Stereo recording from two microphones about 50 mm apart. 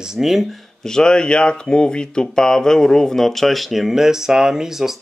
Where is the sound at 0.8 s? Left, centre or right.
Centre.